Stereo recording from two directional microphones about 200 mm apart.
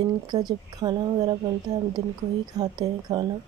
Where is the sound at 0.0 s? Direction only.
20° right (ahead or behind).